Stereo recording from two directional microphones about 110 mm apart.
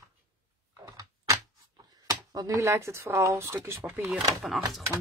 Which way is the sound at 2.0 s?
30° right (ahead or behind).